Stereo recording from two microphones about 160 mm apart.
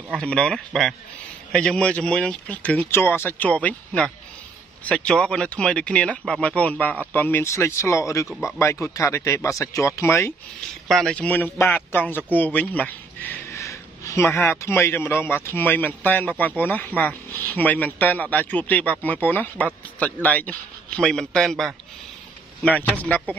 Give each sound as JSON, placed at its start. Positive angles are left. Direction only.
{"t": 0.1, "sound": "a man's voice", "side_deg": 5}
{"t": 10.9, "sound": "a man's voice", "side_deg": 0}